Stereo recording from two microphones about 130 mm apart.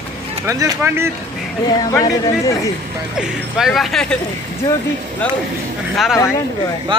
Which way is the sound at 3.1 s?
5° right (ahead or behind).